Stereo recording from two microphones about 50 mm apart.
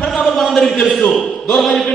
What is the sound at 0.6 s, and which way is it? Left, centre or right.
Speech, centre.